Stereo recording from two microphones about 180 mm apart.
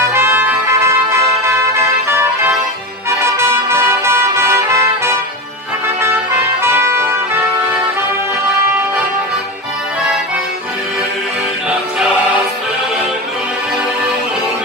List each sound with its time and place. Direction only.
0.0 s music: 15° right (ahead or behind)
5.9 s trumpet: 15° right (ahead or behind)